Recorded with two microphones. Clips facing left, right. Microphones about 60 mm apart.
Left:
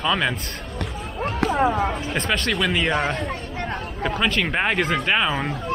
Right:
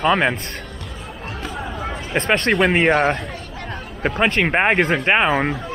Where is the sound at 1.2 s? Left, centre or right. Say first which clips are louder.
Left 10 dB; left.